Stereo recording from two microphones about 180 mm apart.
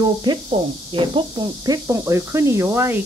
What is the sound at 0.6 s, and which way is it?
Speech, 30° right (ahead or behind).